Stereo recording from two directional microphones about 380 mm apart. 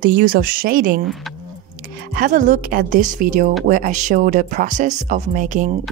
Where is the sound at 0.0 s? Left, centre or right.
Right.